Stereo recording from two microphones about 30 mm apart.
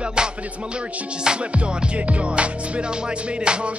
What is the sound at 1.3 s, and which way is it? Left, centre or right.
Music, right.